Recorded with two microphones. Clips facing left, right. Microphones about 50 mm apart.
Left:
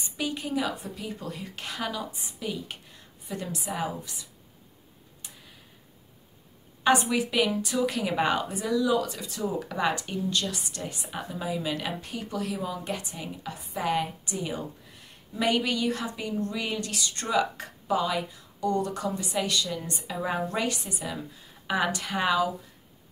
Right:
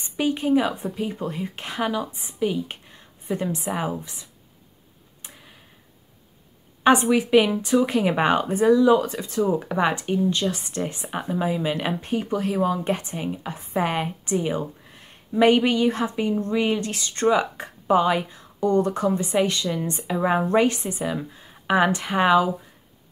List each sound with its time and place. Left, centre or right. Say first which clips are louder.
0.0 s speech: right 8 dB; right
6.8 s speech: right 6 dB; right